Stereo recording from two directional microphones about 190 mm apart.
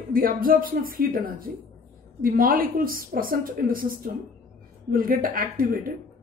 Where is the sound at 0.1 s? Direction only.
50° right (ahead or behind).